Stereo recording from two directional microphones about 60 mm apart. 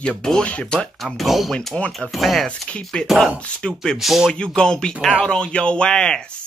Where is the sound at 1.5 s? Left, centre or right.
Centre.